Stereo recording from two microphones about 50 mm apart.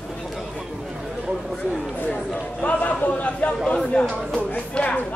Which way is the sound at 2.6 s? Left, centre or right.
Left.